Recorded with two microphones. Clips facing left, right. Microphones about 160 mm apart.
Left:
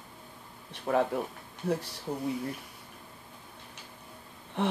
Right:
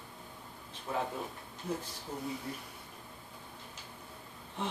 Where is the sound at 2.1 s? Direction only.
65° left (ahead or behind).